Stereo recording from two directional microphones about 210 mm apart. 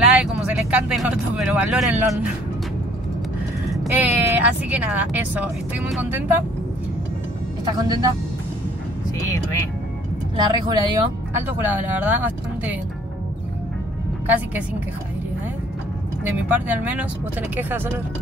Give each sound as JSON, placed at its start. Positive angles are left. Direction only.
{"t": 0.2, "sound": "vehicle", "side_deg": -5}
{"t": 3.7, "sound": "speech", "side_deg": -5}
{"t": 7.6, "sound": "speech", "side_deg": -15}
{"t": 10.3, "sound": "speech", "side_deg": -20}
{"t": 14.2, "sound": "speech", "side_deg": -10}
{"t": 16.3, "sound": "speech", "side_deg": -10}